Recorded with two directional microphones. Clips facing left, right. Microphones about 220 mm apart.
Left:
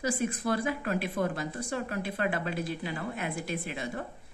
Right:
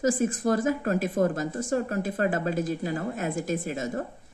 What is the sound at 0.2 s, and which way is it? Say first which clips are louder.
A woman's voice: right 5 dB; 45° right (ahead or behind).